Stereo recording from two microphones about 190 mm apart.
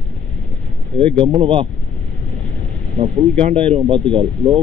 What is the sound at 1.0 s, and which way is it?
Speech, 5° left (ahead or behind).